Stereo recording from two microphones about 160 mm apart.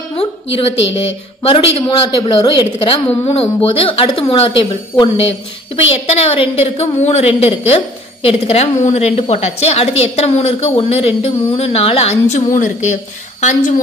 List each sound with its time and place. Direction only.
0.1 s a woman's voice: 35° left (ahead or behind)
6.2 s a woman's voice: 35° left (ahead or behind)